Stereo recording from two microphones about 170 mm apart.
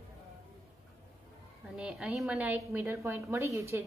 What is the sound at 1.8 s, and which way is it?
A woman's voice, 5° right (ahead or behind).